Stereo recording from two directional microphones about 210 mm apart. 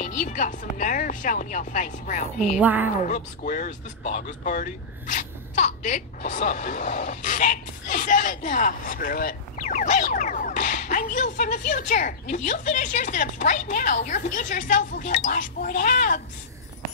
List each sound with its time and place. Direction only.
0.0 s speech: 35° left (ahead or behind)
2.6 s a woman's voice: 10° right (ahead or behind)
3.0 s speech: 40° left (ahead or behind)